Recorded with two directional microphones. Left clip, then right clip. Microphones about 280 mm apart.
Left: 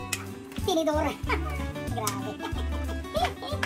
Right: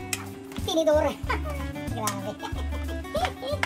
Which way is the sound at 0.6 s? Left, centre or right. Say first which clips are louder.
Right 4 dB; centre.